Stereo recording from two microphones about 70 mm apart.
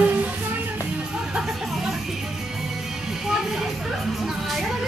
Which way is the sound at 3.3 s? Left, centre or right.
Centre.